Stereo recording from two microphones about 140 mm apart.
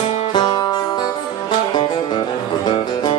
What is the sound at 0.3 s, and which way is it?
Music, 30° left (ahead or behind).